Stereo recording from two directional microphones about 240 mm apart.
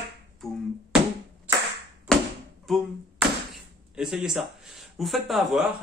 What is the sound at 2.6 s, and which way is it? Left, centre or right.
Speech, centre.